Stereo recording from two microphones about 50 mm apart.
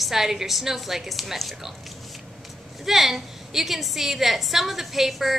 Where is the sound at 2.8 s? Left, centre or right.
Centre.